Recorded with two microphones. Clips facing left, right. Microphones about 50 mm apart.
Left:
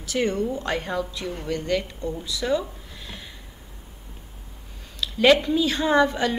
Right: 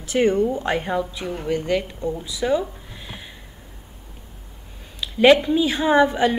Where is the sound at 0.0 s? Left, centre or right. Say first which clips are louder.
Right 6 dB; right.